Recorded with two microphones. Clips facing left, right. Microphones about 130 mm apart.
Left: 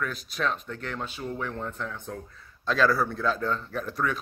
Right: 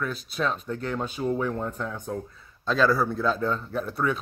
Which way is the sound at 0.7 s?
20° right (ahead or behind).